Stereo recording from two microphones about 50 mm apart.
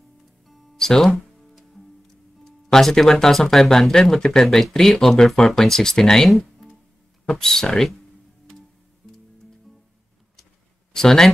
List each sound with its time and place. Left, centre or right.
0.5 s music: centre
2.4 s speech: centre
6.3 s music: centre
7.2 s speech: centre
11.0 s speech: centre